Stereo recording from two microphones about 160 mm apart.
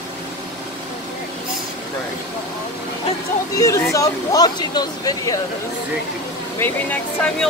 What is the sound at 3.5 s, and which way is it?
Speech, 20° left (ahead or behind).